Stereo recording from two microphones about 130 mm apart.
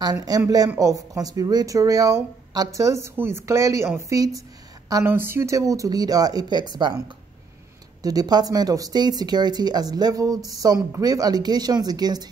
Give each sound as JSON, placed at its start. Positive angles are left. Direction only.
{"t": 0.0, "sound": "speech", "side_deg": -30}
{"t": 8.0, "sound": "speech", "side_deg": -30}